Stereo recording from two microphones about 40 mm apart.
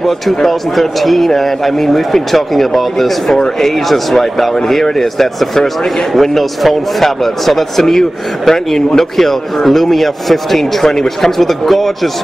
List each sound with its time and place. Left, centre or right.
0.0 s speech: centre